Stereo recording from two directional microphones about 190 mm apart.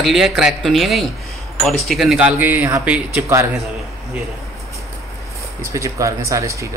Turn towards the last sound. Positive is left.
turn(degrees=-15)  # may be behind; listen again after turning